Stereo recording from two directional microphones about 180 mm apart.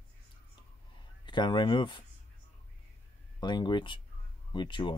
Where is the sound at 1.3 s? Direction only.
25° left (ahead or behind).